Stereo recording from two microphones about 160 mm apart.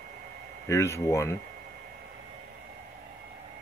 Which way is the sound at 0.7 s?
15° left (ahead or behind).